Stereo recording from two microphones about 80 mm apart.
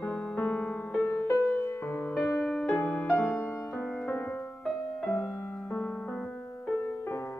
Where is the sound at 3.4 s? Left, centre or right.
Left.